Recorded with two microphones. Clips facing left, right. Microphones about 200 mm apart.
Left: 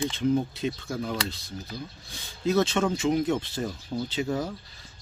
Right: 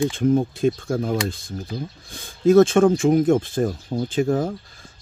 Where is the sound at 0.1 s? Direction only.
50° right (ahead or behind).